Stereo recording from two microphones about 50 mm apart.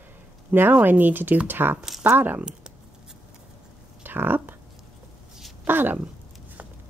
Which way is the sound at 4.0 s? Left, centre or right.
Right.